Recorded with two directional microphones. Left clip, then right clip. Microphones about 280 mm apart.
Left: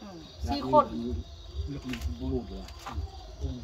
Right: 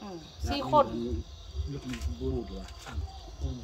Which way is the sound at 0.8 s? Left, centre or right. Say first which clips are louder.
Left 1 dB; right.